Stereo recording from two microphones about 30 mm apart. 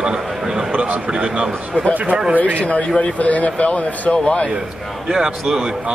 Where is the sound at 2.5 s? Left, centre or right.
Left.